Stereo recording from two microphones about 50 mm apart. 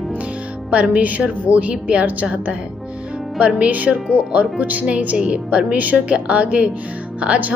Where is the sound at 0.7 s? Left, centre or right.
Right.